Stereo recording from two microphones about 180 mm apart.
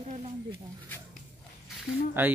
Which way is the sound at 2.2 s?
10° right (ahead or behind).